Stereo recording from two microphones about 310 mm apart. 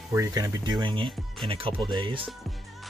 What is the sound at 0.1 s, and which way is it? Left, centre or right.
Speech, centre.